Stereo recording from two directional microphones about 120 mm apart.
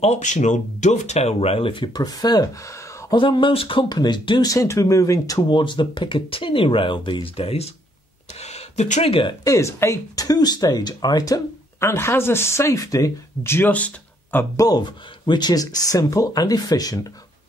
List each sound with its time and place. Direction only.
0.0 s speech: 80° left; by 3.2 s 25° left (ahead or behind)
3.2 s speech: 40° left (ahead or behind)
8.4 s a sound: 65° left (ahead or behind); by 9.1 s 80° left
9.4 s speech: 25° left (ahead or behind)
11.9 s speech: 20° left (ahead or behind)
14.6 s speech: 35° left (ahead or behind)